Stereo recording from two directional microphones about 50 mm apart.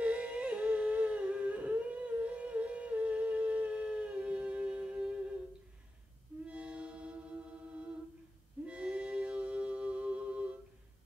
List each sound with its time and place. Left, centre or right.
0.0 s humming: right
6.4 s mantra: right
8.6 s music: right